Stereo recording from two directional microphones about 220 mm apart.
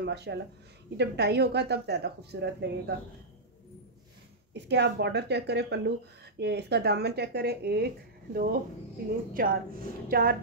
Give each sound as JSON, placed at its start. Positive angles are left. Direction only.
{"t": 0.0, "sound": "speech", "side_deg": -50}
{"t": 4.6, "sound": "a woman's voice", "side_deg": -50}